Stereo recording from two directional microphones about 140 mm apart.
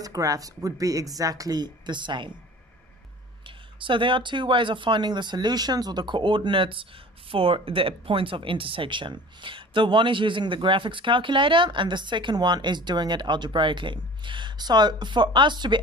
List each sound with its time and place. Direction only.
0.0 s speech: 25° right (ahead or behind)
3.4 s speech: 35° right (ahead or behind)